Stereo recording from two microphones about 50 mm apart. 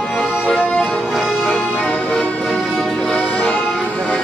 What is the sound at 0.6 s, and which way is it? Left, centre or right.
Music, left.